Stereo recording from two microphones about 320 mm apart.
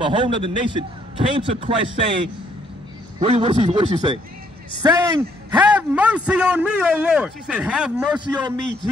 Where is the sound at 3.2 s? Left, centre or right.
Centre.